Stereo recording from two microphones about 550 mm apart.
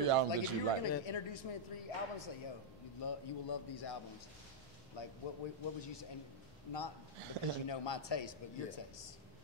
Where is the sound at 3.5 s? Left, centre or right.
Left.